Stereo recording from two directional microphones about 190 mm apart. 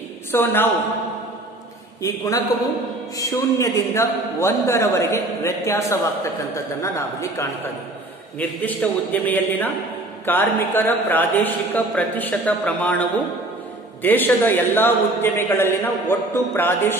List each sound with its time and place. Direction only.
0.3 s a man's voice: 10° left (ahead or behind)
2.0 s a man's voice: 15° left (ahead or behind)